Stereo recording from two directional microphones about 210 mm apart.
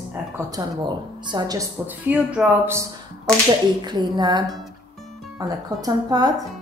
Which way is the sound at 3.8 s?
20° right (ahead or behind).